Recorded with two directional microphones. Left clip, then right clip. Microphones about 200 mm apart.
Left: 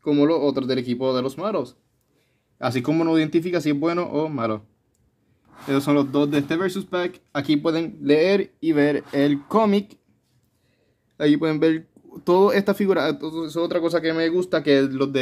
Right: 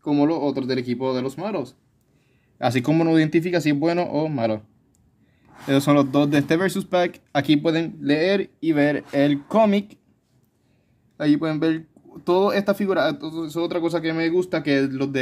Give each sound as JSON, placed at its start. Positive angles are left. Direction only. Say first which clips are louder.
{"t": 0.0, "sound": "speech", "louder": "left 2 dB", "side_deg": 5}
{"t": 2.6, "sound": "speech", "louder": "right 2 dB", "side_deg": -20}
{"t": 5.7, "sound": "speech", "louder": "right 2 dB", "side_deg": -30}
{"t": 11.1, "sound": "speech", "louder": "left 2 dB", "side_deg": 10}